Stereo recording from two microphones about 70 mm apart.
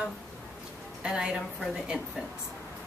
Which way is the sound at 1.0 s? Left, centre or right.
Centre.